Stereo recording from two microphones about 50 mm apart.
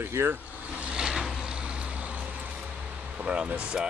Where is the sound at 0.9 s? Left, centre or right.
Centre.